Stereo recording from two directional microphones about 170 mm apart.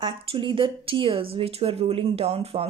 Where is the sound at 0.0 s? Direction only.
30° right (ahead or behind).